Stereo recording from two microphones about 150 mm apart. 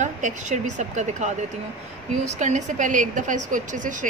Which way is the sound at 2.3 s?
55° right (ahead or behind).